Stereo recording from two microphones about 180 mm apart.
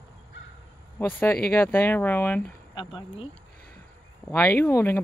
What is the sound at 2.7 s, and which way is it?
Speech, 30° left (ahead or behind).